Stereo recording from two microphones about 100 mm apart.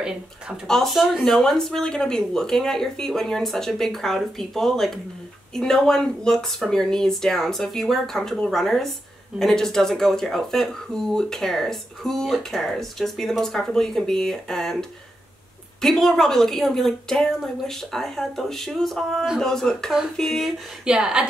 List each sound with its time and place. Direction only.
0.7 s speech: centre (ahead or behind)
20.8 s a woman's voice: 10° right (ahead or behind)